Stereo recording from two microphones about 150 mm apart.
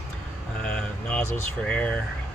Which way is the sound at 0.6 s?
5° left (ahead or behind).